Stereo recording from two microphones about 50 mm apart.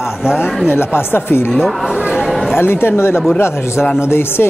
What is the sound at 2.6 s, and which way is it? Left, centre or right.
Speech, left.